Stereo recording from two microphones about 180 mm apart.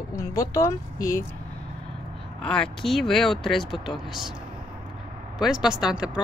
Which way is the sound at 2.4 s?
5° left (ahead or behind).